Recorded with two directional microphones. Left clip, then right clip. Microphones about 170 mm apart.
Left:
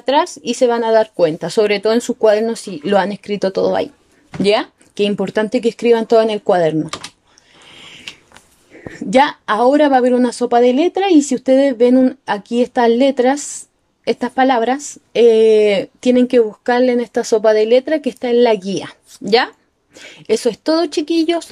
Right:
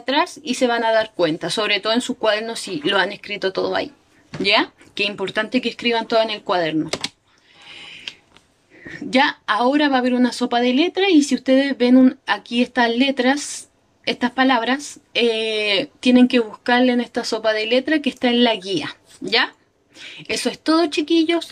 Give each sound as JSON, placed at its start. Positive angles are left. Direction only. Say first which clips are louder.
{"t": 0.0, "sound": "speech", "louder": "left 5 dB", "side_deg": 45}
{"t": 8.8, "sound": "speech", "louder": "left 5 dB", "side_deg": 35}